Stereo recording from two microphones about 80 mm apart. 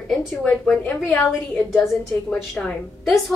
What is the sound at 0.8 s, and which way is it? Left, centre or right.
Speech, centre.